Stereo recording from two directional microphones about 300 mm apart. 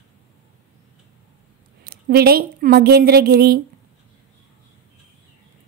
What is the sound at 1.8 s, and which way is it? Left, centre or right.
A woman's voice, right.